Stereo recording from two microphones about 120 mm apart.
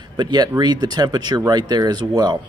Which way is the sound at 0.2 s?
35° right (ahead or behind).